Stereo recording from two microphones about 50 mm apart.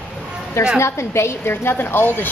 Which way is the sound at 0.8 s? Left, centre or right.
Left.